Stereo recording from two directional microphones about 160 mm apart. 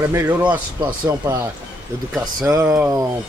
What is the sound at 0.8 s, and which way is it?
Speech, 25° right (ahead or behind).